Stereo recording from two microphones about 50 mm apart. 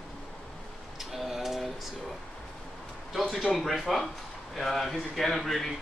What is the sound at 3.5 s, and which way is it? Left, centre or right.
Speech, centre.